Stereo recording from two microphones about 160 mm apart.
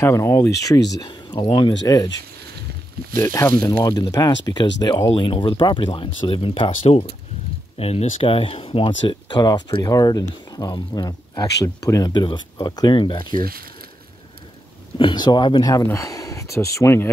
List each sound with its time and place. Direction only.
0.0 s speech: 15° left (ahead or behind)
3.2 s speech: 15° left (ahead or behind)
15.0 s speech: 30° left (ahead or behind)